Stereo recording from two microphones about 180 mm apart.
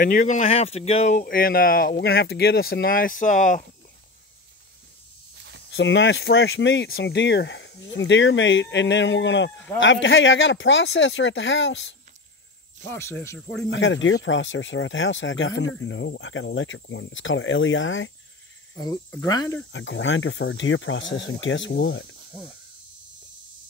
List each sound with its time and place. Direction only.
0.0 s speech: 50° left (ahead or behind)
5.7 s speech: 90° left
12.9 s speech: 15° left (ahead or behind)
13.7 s speech: 90° left
18.8 s speech: 20° left (ahead or behind)
19.7 s speech: 90° left